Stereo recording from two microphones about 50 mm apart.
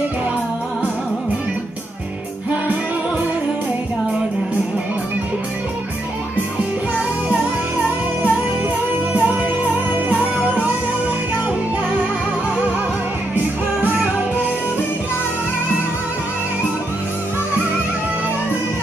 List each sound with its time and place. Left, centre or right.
9.1 s music: right